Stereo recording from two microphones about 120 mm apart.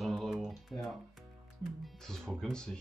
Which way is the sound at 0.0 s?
Centre (ahead or behind).